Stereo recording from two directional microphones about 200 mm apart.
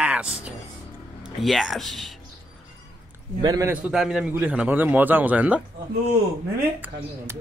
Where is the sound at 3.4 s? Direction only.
20° right (ahead or behind).